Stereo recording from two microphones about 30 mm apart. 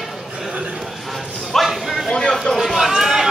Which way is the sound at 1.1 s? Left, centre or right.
Centre.